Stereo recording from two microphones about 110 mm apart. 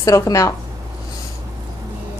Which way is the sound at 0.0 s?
30° left (ahead or behind).